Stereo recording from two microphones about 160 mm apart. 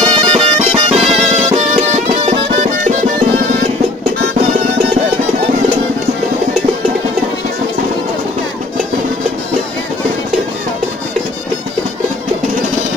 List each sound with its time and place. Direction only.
0.1 s music: 30° right (ahead or behind)
2.2 s music: 50° right (ahead or behind)